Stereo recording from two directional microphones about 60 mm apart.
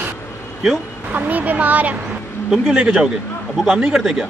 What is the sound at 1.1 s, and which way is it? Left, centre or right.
Speech, right.